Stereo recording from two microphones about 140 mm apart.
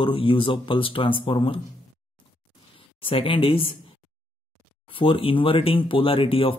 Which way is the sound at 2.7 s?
40° left (ahead or behind).